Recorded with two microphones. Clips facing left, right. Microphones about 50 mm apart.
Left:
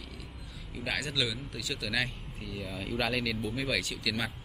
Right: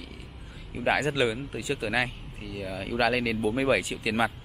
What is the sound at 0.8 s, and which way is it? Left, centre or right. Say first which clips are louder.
Speech: right 8 dB; right.